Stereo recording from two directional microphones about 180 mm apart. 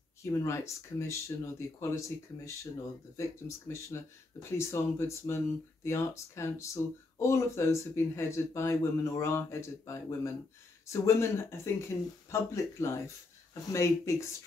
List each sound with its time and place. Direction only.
0.2 s speech: 15° left (ahead or behind)